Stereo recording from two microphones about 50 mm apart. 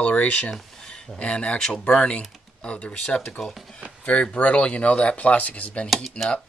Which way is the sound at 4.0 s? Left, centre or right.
Left.